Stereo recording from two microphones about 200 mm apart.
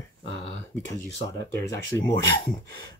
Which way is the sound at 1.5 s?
15° left (ahead or behind).